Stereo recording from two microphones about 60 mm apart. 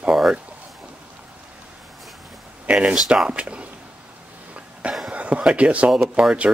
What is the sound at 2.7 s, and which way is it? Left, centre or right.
Speech, centre.